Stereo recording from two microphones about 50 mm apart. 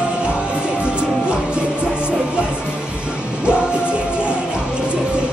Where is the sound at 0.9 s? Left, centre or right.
Right.